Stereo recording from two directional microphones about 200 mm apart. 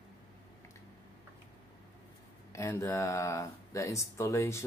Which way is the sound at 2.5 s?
15° left (ahead or behind).